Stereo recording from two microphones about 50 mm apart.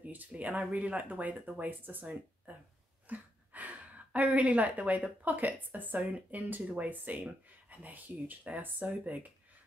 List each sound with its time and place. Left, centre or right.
0.0 s speech: right